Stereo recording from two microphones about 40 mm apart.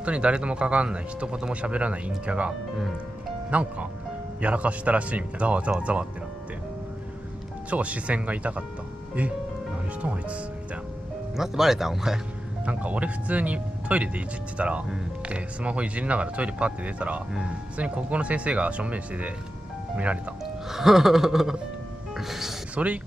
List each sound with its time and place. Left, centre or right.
0.0 s speech: right
7.7 s speech: right
11.3 s speech: centre
12.6 s speech: right
20.4 s music: centre